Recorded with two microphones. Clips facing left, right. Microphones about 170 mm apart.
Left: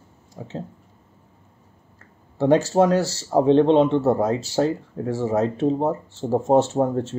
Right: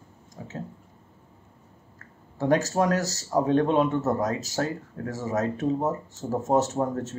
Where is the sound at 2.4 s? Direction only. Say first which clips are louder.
Left 6 dB; 30° left (ahead or behind).